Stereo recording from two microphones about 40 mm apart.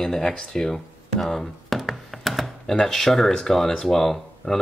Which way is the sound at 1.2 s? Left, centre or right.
Centre.